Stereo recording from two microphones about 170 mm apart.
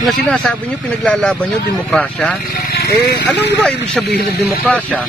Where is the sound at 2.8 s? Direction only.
70° left (ahead or behind).